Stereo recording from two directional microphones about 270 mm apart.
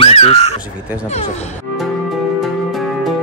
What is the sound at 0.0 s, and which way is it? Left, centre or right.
Crow, left.